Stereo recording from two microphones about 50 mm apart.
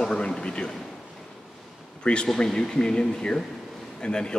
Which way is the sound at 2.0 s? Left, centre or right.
Centre.